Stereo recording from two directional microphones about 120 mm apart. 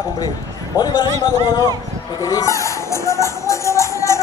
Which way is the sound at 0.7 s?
35° left (ahead or behind).